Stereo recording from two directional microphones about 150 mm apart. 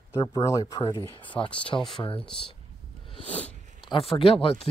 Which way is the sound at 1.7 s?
25° left (ahead or behind).